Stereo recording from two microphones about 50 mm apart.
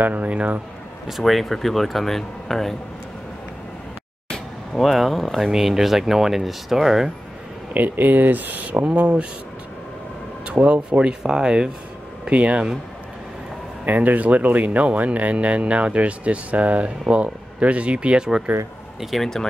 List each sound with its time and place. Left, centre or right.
0.0 s speech: right
1.0 s speech: centre
4.7 s speech: centre
5.5 s speech: centre
7.7 s speech: right
10.4 s speech: right
12.3 s speech: right
13.8 s speech: right
18.9 s speech: centre